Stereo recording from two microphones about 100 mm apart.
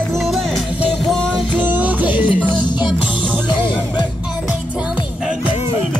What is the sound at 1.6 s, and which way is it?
Music, 15° right (ahead or behind).